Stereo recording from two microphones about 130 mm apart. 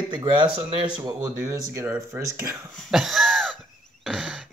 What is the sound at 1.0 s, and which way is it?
Speech, 30° right (ahead or behind).